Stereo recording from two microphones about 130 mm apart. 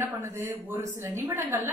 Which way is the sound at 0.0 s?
20° right (ahead or behind).